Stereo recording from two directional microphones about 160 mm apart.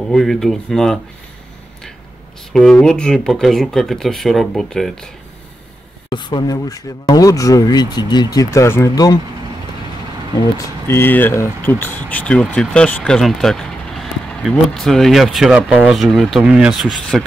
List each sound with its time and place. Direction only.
0.1 s speech: centre (ahead or behind)
2.5 s speech: 5° left (ahead or behind)
6.0 s speech: 25° left (ahead or behind)
10.9 s speech: 15° left (ahead or behind)